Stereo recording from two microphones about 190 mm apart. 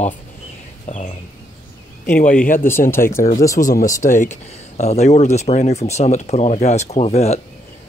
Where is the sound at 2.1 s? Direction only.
45° left (ahead or behind).